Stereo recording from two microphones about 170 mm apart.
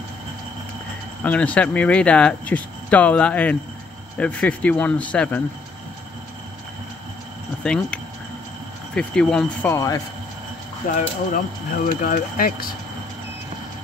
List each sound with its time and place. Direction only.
1.2 s speech: 10° left (ahead or behind)
7.6 s speech: 5° left (ahead or behind)
11.0 s speech: 55° left (ahead or behind)